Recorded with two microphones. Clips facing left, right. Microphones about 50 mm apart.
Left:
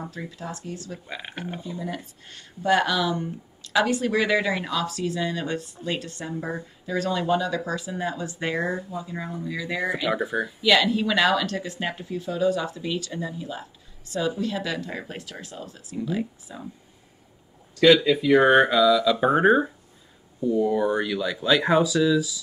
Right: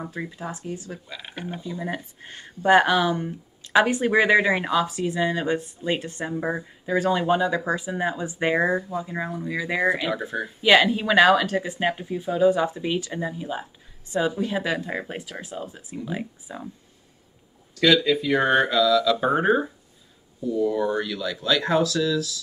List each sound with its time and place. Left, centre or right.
0.0 s speech: centre
1.0 s speech: centre
1.8 s speech: right
10.1 s speech: centre
10.6 s speech: right
17.7 s speech: centre
20.4 s speech: centre